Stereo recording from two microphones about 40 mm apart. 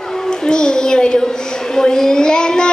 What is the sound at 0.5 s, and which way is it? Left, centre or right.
Speech, centre.